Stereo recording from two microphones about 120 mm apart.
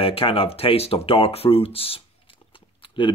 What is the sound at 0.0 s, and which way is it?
Speech, 50° left (ahead or behind).